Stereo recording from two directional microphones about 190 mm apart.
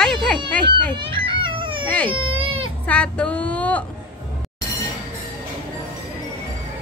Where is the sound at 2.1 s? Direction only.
30° right (ahead or behind).